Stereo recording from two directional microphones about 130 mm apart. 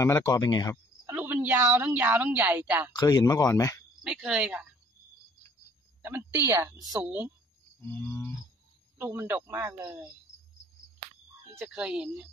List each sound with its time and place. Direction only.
0.0 s speech: 25° left (ahead or behind)
1.0 s a woman's voice: 15° right (ahead or behind)
2.9 s speech: 30° left (ahead or behind)
4.0 s speech: 5° right (ahead or behind)
6.0 s a woman's voice: 15° right (ahead or behind)
7.0 s a man's voice: 15° right (ahead or behind)
7.8 s a sound: 10° left (ahead or behind)
8.9 s a man's voice: 15° right (ahead or behind)
11.5 s speech: 5° right (ahead or behind)